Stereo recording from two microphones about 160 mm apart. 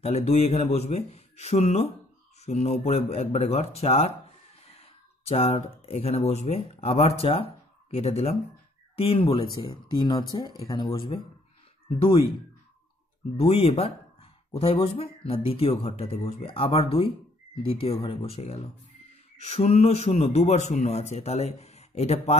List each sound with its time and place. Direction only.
0.0 s a man's voice: 45° left (ahead or behind)
13.4 s a man's voice: 40° left (ahead or behind)